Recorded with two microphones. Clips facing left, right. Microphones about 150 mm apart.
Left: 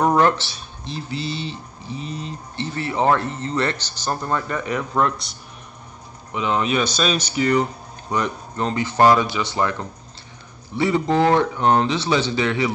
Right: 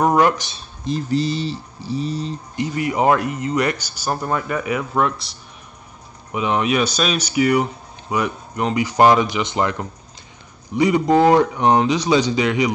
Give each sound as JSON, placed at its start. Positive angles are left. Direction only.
{"t": 0.0, "sound": "speech", "side_deg": -10}
{"t": 0.8, "sound": "speech", "side_deg": -45}
{"t": 2.5, "sound": "speech", "side_deg": -15}
{"t": 6.3, "sound": "speech", "side_deg": -15}